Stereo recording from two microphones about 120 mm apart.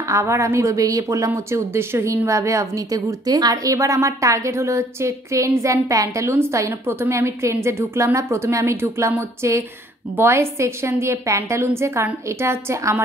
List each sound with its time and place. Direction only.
0.1 s a woman's voice: 25° right (ahead or behind)